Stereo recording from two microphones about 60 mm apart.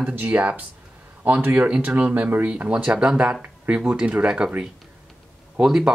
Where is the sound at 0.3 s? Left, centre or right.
Right.